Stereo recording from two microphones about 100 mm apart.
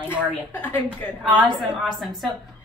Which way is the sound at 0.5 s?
15° left (ahead or behind).